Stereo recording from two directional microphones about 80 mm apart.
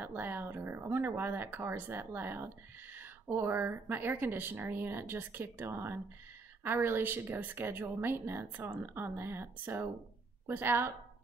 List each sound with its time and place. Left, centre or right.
0.0 s speech: right